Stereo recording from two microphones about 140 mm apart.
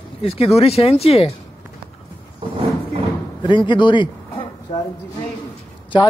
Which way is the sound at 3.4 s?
35° left (ahead or behind).